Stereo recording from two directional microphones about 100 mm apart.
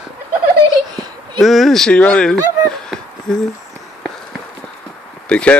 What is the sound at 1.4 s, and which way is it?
Speech, centre (ahead or behind).